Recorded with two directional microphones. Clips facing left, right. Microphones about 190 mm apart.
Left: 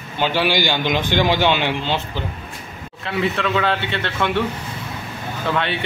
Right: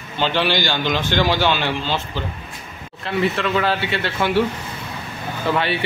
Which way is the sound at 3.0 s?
Centre (ahead or behind).